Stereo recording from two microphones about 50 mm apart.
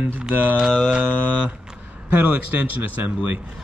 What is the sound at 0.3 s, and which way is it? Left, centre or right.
Speech, right.